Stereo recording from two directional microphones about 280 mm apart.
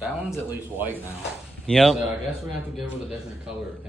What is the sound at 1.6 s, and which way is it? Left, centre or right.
Speech, centre.